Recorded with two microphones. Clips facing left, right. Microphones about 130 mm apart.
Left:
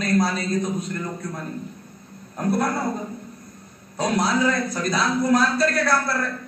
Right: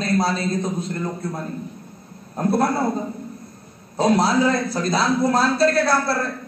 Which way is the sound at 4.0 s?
30° right (ahead or behind).